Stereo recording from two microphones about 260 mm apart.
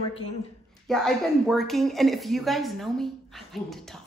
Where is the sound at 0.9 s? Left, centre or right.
Centre.